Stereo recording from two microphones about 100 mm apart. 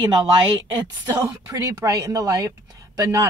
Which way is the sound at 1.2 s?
35° right (ahead or behind).